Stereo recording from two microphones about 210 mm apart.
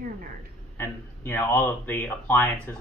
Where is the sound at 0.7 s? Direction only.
10° left (ahead or behind).